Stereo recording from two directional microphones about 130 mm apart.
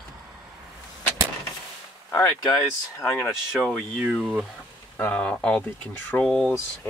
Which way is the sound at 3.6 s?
10° right (ahead or behind).